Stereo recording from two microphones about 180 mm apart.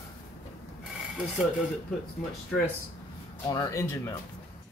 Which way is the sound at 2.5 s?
Centre (ahead or behind).